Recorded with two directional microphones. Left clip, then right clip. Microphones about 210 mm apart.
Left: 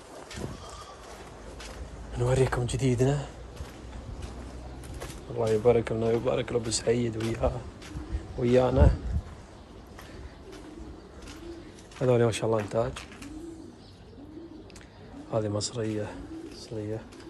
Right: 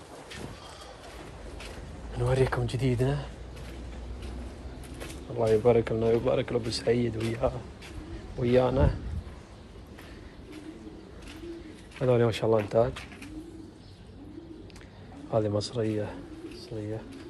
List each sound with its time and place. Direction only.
2.1 s speech: 20° left (ahead or behind)
5.4 s speech: 5° left (ahead or behind)
5.7 s speech: 15° left (ahead or behind)
12.0 s speech: 20° left (ahead or behind)
15.3 s speech: 15° left (ahead or behind)